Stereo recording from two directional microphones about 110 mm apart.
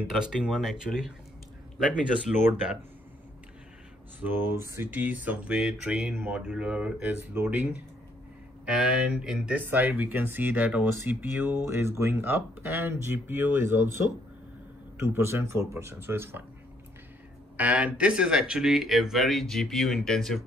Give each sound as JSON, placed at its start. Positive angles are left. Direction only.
{"t": 0.2, "sound": "speech", "side_deg": -5}
{"t": 2.3, "sound": "speech", "side_deg": -70}
{"t": 4.2, "sound": "speech", "side_deg": -15}
{"t": 15.0, "sound": "speech", "side_deg": -25}
{"t": 17.6, "sound": "speech", "side_deg": -15}